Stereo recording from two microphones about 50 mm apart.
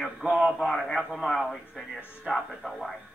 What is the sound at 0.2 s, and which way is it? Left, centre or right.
Speech, centre.